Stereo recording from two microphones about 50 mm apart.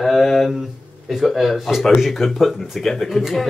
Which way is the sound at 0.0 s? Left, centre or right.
Centre.